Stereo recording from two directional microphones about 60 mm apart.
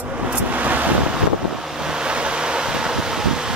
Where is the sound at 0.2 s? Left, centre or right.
Centre.